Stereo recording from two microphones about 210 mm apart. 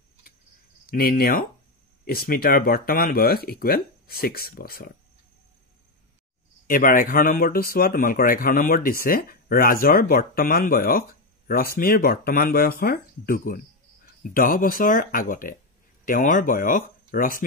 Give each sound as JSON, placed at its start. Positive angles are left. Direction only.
{"t": 0.8, "sound": "a man's voice", "side_deg": 45}
{"t": 6.7, "sound": "a man's voice", "side_deg": 40}